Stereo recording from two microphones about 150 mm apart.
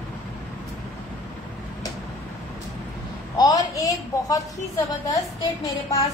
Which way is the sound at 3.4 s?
25° left (ahead or behind).